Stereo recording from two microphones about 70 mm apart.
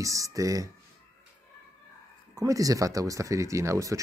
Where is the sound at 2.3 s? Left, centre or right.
Right.